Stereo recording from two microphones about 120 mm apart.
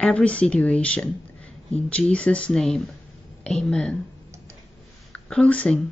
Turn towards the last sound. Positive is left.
turn(degrees=10)  # may be behind; listen again after turning